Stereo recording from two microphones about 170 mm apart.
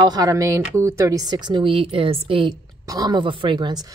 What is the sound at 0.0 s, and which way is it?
Speech, 25° right (ahead or behind).